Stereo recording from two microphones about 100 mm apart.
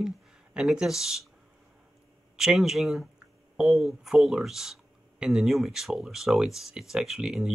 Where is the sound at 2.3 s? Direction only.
5° right (ahead or behind).